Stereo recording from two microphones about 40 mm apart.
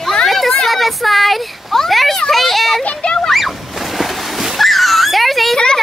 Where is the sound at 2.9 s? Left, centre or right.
Left.